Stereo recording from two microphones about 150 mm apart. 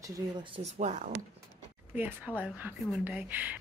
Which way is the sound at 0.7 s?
55° right (ahead or behind).